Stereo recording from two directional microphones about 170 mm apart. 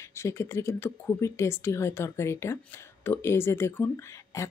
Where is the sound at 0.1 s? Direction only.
15° left (ahead or behind).